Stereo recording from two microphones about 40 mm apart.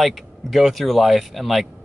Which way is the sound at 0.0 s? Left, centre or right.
Centre.